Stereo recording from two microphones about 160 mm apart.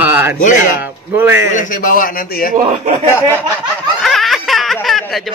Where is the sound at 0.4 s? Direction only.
55° left (ahead or behind).